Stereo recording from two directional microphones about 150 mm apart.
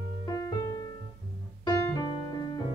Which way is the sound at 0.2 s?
25° left (ahead or behind).